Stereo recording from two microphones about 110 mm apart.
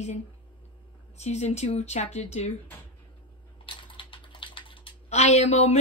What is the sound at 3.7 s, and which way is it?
Typing, 50° left (ahead or behind).